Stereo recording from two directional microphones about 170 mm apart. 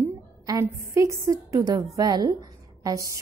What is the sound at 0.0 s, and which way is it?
A woman's voice, 15° right (ahead or behind).